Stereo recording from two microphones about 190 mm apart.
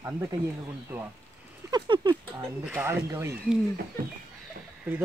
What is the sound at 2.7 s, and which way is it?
Speech, 10° right (ahead or behind).